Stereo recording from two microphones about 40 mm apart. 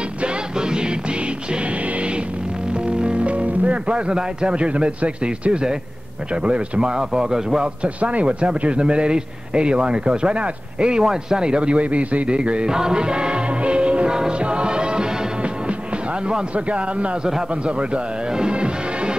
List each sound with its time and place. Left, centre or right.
0.2 s music: right
2.7 s speech: right
7.8 s speech: right
12.4 s speech: right
12.7 s music: centre
16.5 s speech: right
18.3 s music: right